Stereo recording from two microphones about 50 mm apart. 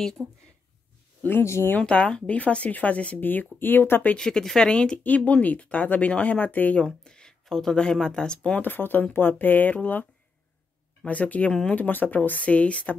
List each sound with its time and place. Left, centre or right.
0.2 s speech: right
1.4 s speech: left
1.8 s speech: left
3.2 s speech: left
4.2 s speech: centre
4.9 s speech: left
7.1 s speech: centre
8.5 s speech: left
11.1 s speech: left